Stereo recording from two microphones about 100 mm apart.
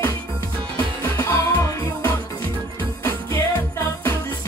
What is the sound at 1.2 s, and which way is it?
Music, 25° left (ahead or behind).